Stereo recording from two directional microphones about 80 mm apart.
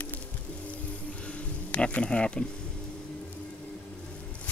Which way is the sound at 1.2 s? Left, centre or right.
Centre.